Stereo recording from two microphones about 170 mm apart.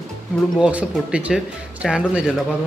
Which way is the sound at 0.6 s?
5° right (ahead or behind).